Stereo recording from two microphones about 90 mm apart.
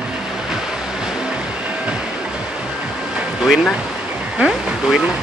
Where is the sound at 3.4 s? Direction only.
5° right (ahead or behind).